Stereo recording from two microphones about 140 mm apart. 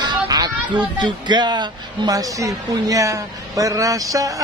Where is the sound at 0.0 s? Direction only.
30° right (ahead or behind).